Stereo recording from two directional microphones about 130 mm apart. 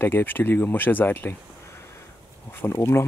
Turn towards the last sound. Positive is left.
turn(degrees=20)  # may be behind; listen again after turning